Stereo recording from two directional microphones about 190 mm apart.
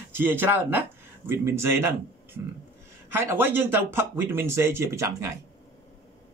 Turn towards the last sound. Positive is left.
turn(degrees=-15)  # may be behind; listen again after turning